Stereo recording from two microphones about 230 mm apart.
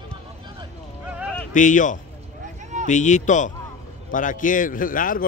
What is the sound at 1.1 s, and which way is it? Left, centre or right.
Speech, centre.